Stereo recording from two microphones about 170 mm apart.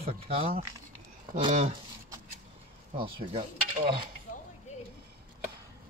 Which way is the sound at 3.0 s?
30° right (ahead or behind).